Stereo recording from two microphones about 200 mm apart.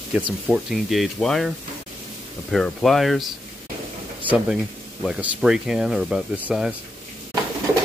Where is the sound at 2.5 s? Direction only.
Centre (ahead or behind).